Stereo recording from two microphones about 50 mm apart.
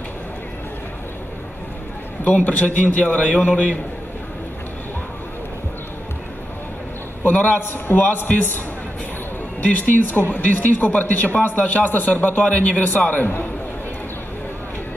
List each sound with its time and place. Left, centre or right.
2.2 s speech: left
3.3 s a man's voice: right
7.7 s speech: left
9.6 s speech: left